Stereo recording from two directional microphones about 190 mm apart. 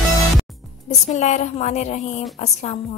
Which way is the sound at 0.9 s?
40° left (ahead or behind).